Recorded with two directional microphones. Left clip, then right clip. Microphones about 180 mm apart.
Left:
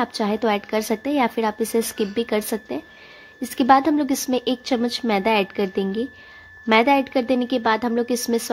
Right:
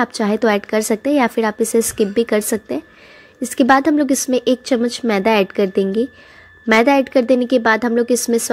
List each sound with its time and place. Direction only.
0.0 s a woman's voice: 15° right (ahead or behind)